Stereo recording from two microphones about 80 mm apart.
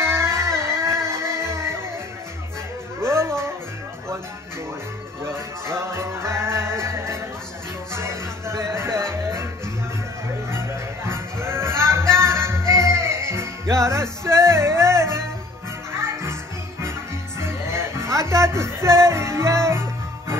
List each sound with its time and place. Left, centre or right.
0.0 s music: right
3.0 s a sound: right
5.2 s music: right
11.1 s music: right
17.4 s music: right